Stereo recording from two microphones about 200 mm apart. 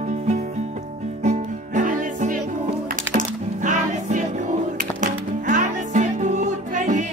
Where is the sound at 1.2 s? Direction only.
35° right (ahead or behind).